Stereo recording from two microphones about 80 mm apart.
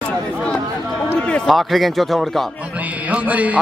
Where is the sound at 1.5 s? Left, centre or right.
Centre.